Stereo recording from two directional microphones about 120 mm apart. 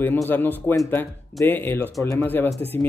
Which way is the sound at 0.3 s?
15° left (ahead or behind).